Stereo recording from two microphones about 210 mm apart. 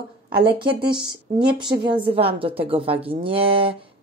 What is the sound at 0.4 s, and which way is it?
Speech, 25° right (ahead or behind).